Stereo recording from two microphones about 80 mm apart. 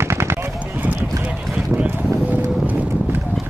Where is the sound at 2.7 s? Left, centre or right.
Centre.